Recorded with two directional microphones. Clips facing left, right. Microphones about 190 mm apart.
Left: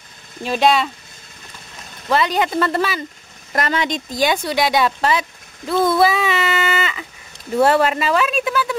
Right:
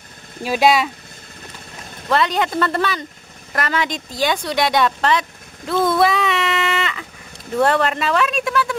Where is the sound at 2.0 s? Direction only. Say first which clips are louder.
Left 1 dB; centre (ahead or behind).